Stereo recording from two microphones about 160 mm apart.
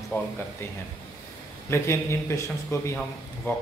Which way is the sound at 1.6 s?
15° left (ahead or behind).